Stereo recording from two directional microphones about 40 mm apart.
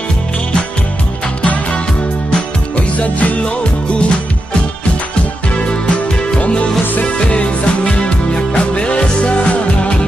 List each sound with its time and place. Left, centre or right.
3.0 s music: left
5.6 s music: left